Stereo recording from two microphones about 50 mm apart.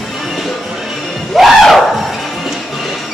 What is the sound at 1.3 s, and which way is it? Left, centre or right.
Music, centre.